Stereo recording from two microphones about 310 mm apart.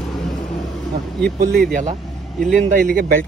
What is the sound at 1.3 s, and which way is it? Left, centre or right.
Speech, right.